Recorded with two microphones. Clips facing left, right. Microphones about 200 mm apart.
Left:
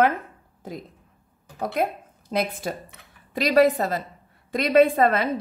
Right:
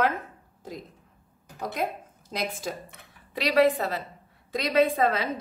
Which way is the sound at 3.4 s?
45° left (ahead or behind).